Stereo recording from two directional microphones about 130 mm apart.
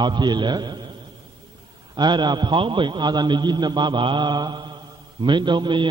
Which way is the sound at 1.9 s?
35° right (ahead or behind).